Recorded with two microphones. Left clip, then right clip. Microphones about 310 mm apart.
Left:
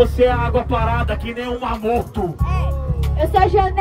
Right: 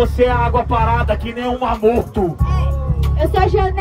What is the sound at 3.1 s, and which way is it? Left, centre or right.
Speech, left.